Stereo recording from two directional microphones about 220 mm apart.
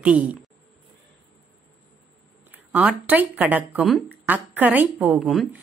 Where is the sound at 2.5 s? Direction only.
5° right (ahead or behind).